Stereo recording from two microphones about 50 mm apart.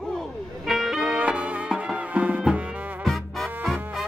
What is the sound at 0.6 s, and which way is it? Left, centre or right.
Music, centre.